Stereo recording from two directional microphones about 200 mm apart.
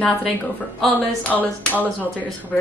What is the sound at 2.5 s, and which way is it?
Speech, 5° left (ahead or behind).